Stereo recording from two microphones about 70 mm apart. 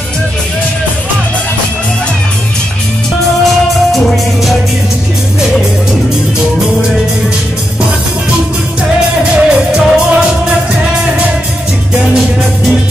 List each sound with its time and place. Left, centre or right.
9.3 s music: centre